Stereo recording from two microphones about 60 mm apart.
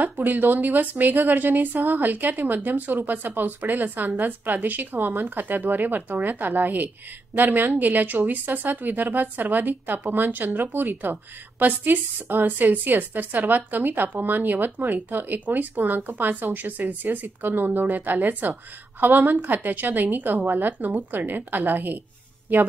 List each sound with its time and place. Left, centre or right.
0.0 s a woman's voice: right